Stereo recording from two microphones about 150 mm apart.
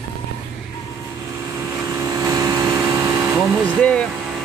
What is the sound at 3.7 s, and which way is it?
Speech, 10° left (ahead or behind).